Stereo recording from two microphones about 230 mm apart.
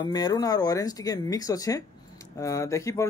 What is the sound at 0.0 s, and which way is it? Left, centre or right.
Speech, centre.